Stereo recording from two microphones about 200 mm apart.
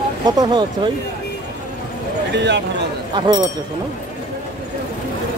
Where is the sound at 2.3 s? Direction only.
60° right (ahead or behind).